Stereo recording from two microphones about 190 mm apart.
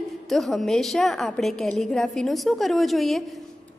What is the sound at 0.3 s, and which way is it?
A woman's voice, centre (ahead or behind).